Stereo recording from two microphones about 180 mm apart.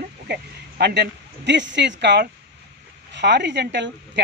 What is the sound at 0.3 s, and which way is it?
Speech, 65° right (ahead or behind).